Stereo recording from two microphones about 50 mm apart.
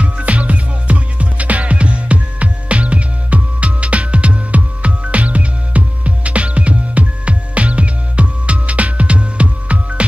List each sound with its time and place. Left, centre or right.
0.0 s music: right